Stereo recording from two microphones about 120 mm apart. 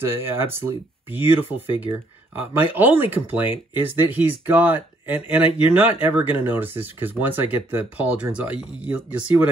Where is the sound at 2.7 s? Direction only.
15° right (ahead or behind).